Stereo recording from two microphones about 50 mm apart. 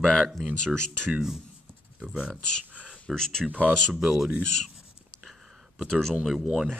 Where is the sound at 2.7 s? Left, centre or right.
Right.